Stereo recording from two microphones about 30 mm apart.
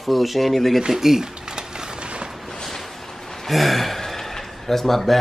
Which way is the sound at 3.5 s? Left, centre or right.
Centre.